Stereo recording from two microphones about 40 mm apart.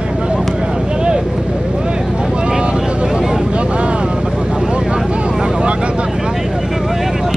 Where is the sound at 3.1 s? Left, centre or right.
Centre.